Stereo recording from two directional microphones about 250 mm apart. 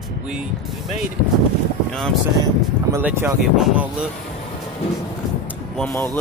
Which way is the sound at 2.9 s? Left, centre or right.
Centre.